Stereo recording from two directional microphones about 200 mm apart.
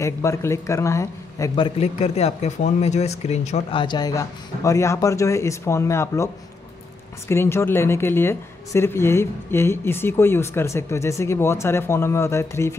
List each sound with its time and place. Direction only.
0.0 s speech: 15° left (ahead or behind)
1.8 s speech: 30° left (ahead or behind); by 12.7 s 15° left (ahead or behind)